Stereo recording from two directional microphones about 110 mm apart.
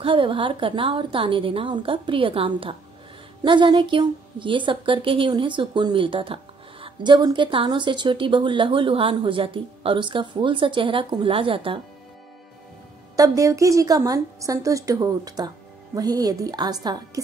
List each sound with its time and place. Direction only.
0.0 s a woman's voice: 50° right (ahead or behind)
13.1 s a woman's voice: 30° right (ahead or behind)